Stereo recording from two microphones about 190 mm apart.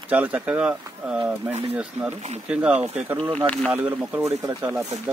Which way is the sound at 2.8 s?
35° right (ahead or behind).